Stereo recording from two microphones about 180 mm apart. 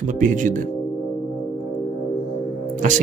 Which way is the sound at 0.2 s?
45° right (ahead or behind).